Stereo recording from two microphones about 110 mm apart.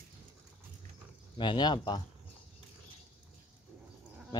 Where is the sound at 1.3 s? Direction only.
45° left (ahead or behind).